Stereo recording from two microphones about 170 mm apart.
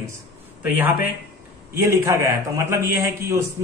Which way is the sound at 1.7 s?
15° right (ahead or behind).